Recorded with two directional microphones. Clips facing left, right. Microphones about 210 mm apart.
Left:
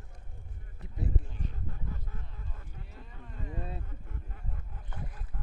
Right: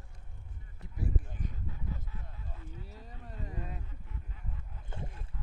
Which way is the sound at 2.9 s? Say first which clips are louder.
Right 1 dB; 40° right (ahead or behind).